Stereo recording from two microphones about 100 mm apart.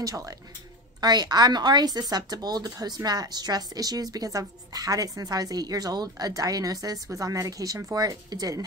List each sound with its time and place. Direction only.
0.0 s speech: 35° right (ahead or behind)